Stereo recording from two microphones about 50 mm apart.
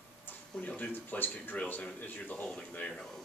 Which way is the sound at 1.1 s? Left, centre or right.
Left.